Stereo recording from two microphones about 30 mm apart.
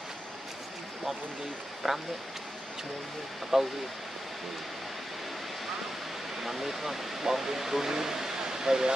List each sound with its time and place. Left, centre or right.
1.8 s speech: centre
3.5 s speech: centre
6.4 s speech: centre